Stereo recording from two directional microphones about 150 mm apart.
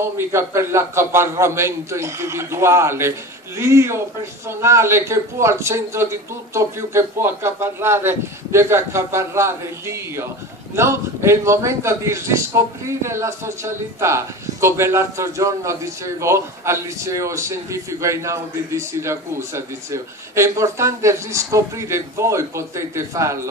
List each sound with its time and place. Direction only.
0.2 s a man's voice: 15° right (ahead or behind)